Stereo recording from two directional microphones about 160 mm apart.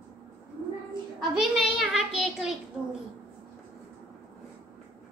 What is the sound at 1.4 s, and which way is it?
A child's voice, centre (ahead or behind).